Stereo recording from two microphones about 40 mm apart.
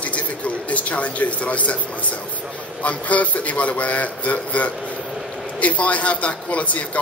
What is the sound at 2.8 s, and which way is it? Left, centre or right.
Speech, left.